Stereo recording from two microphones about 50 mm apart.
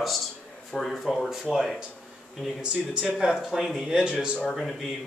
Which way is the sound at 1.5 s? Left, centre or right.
Centre.